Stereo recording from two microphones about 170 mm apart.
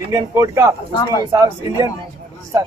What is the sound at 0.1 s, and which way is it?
Speech, 20° right (ahead or behind).